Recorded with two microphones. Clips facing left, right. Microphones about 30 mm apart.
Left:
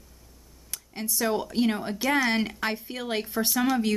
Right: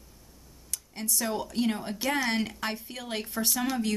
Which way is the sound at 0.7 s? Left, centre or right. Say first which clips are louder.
Left 1 dB; centre.